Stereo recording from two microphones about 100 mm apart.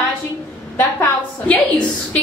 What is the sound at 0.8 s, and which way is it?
Speech, 20° left (ahead or behind).